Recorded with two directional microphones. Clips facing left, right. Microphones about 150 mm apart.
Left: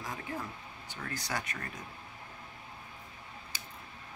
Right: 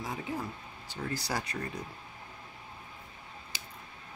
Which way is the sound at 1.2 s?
30° right (ahead or behind).